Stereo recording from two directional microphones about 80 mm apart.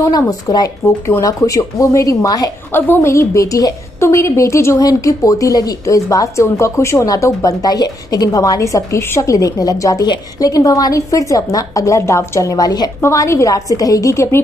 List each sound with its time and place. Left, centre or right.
0.3 s speech: left
1.2 s a woman's voice: left
2.7 s a woman's voice: left
4.7 s a woman's voice: left
13.0 s a woman's voice: left